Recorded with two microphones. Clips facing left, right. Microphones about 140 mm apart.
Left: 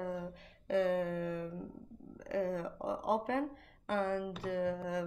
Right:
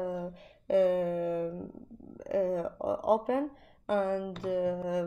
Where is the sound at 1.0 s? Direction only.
40° right (ahead or behind).